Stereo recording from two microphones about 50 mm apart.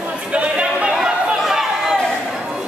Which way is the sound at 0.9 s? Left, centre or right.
Centre.